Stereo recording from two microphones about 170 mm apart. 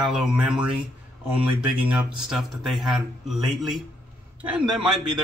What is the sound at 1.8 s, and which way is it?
Speech, 5° right (ahead or behind).